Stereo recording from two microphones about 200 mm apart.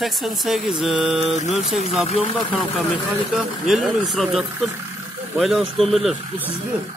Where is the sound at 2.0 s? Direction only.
30° left (ahead or behind).